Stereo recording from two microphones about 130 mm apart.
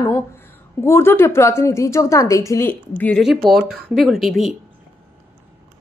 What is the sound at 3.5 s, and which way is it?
Speech, centre (ahead or behind).